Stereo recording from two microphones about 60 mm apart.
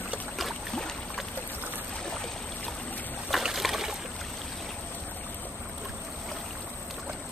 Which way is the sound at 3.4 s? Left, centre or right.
Centre.